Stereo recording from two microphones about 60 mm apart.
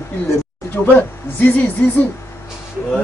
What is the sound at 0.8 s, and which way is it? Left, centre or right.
Music, left.